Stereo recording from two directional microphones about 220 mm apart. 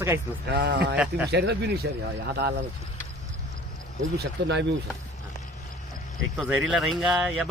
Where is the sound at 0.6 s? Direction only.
50° right (ahead or behind).